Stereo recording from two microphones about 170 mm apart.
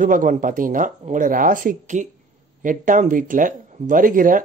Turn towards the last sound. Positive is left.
turn(degrees=-55)  # may be behind; listen again after turning